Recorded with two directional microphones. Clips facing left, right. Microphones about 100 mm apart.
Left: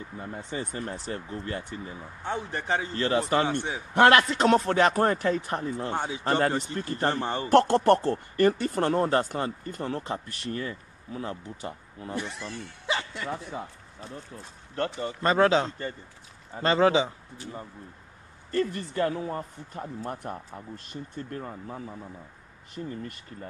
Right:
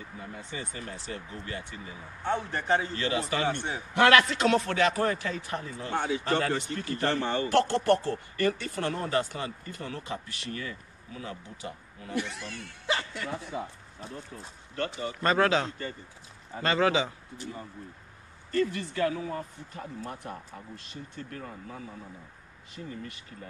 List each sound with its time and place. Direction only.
0.2 s speech: 35° left (ahead or behind)
14.8 s speech: 35° left (ahead or behind)
15.2 s a man's voice: 25° left (ahead or behind)
18.5 s speech: 40° left (ahead or behind)